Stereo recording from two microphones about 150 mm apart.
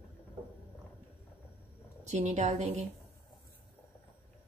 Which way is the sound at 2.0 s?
50° right (ahead or behind).